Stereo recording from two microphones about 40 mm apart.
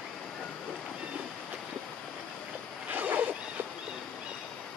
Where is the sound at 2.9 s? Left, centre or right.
Right.